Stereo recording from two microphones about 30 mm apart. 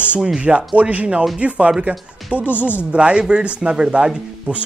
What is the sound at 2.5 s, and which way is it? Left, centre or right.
Speech, right.